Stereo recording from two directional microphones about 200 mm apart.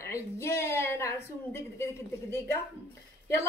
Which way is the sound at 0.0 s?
15° left (ahead or behind).